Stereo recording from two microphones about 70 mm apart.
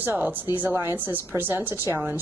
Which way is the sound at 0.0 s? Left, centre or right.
Right.